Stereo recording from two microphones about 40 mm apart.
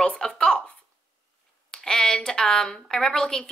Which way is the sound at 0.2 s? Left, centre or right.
Centre.